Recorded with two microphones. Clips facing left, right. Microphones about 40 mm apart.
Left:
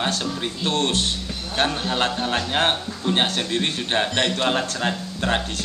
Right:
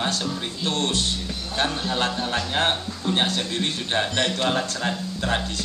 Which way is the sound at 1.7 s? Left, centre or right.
Left.